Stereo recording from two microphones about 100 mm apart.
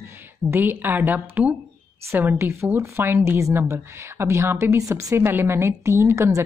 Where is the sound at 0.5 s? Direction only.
20° right (ahead or behind).